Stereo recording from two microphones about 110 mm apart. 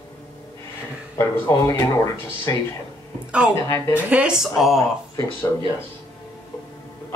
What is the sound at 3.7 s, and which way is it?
Speech, 25° left (ahead or behind).